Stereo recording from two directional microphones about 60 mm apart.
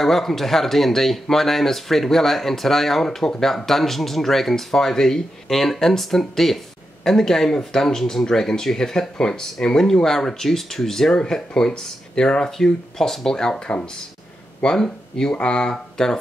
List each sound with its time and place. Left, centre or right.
0.0 s speech: centre